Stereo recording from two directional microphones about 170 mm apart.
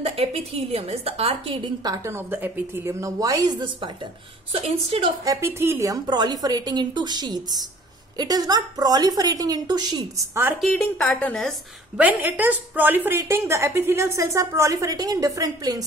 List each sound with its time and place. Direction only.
0.0 s a woman's voice: 35° right (ahead or behind)
4.5 s a woman's voice: 35° right (ahead or behind)
5.2 s a woman's voice: 15° right (ahead or behind)
10.6 s a woman's voice: 5° left (ahead or behind)
12.0 s speech: 10° right (ahead or behind)